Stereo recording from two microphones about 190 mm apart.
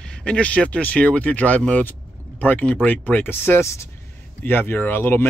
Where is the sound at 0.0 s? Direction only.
5° left (ahead or behind).